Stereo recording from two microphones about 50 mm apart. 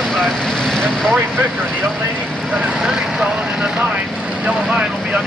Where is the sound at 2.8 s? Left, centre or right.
Centre.